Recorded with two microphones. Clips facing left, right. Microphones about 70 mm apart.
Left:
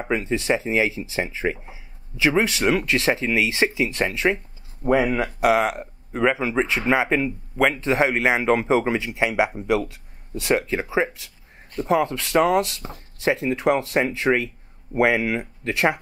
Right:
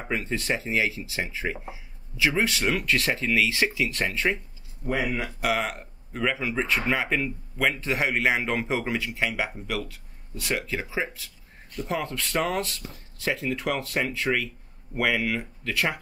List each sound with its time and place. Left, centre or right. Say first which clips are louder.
0.0 s a man's voice: left 6 dB; centre
4.8 s speech: left 9 dB; left
5.4 s a man's voice: left 8 dB; left
12.8 s speech: left 5 dB; left
13.2 s a man's voice: left 7 dB; left